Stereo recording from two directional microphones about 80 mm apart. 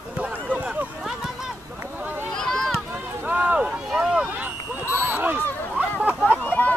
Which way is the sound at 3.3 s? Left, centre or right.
Centre.